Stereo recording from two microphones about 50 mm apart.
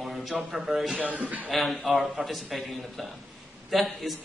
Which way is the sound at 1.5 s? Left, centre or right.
Centre.